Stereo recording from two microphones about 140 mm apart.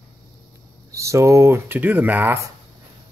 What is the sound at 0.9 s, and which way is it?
Speech, 20° right (ahead or behind).